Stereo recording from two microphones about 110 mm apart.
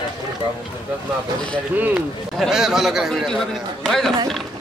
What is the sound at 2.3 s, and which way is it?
A man's voice, 5° right (ahead or behind).